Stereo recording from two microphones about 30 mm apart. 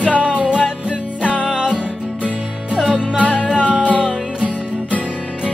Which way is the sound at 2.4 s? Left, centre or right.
Right.